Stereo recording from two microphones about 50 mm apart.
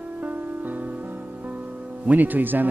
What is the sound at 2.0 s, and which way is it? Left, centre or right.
Speech, right.